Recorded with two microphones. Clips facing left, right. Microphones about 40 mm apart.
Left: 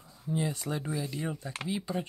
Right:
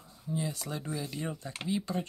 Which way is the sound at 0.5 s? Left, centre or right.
Centre.